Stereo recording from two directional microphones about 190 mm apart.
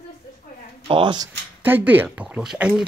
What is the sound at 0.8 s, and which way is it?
Speech, 25° right (ahead or behind).